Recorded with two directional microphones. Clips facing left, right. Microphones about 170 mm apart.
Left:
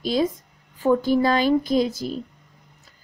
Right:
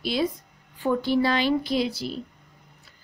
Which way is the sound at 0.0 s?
45° left (ahead or behind).